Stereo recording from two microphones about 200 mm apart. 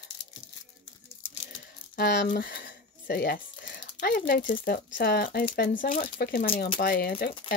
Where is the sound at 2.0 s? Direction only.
55° left (ahead or behind).